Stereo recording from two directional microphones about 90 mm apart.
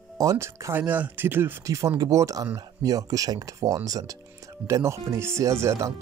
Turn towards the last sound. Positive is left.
turn(degrees=-30)  # may be behind; listen again after turning